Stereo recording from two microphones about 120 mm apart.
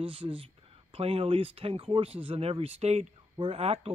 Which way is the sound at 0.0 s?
50° right (ahead or behind).